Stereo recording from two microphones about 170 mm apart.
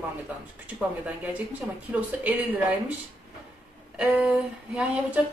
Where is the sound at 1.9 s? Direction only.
10° right (ahead or behind).